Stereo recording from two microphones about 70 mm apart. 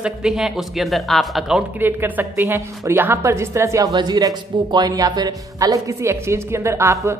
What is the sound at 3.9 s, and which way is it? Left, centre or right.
Speech, right.